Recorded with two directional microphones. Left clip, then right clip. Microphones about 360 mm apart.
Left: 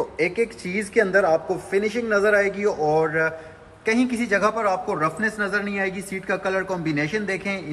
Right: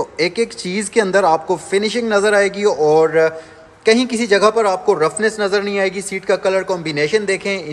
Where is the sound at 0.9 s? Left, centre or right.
Right.